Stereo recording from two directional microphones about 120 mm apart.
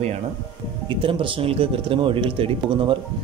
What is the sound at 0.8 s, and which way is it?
Speech, 45° right (ahead or behind).